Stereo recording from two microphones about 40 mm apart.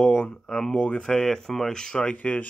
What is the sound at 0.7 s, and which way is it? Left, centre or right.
Speech, left.